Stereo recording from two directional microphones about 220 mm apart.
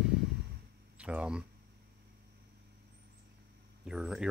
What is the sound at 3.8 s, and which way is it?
Speech, centre (ahead or behind).